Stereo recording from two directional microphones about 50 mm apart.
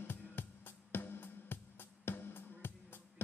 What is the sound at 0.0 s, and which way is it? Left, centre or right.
Music, left.